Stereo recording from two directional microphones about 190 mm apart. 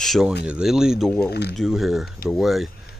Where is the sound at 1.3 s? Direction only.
60° left (ahead or behind).